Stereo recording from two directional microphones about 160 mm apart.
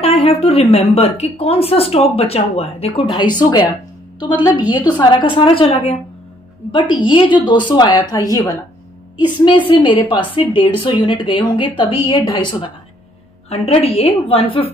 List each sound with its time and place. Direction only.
0.0 s a woman's voice: 40° left (ahead or behind)
7.1 s a woman's voice: 30° left (ahead or behind)
9.7 s a woman's voice: 30° left (ahead or behind)